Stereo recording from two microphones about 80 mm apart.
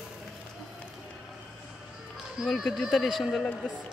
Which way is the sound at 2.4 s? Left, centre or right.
Centre.